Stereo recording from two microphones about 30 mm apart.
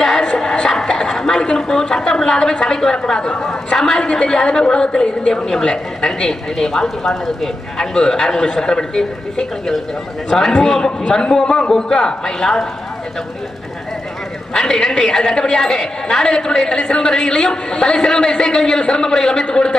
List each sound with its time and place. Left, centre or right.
0.4 s a sound: centre
1.4 s a woman's voice: left
14.5 s a woman's voice: centre